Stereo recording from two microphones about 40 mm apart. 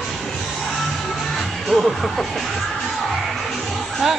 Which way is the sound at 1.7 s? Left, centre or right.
Centre.